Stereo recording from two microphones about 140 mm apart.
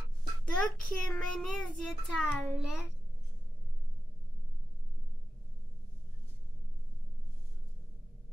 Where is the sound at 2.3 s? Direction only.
10° left (ahead or behind).